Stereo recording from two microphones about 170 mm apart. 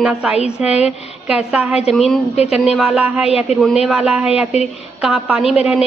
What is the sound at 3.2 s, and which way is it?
Speech, 35° left (ahead or behind).